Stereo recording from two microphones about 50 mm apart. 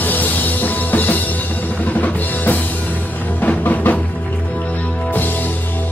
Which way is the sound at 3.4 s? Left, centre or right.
Left.